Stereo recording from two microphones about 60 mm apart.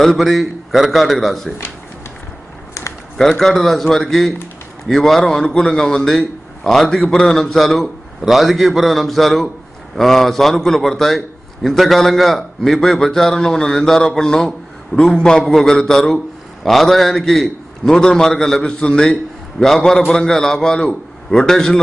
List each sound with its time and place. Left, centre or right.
0.0 s a man's voice: centre
2.8 s a sound: left
3.2 s a man's voice: centre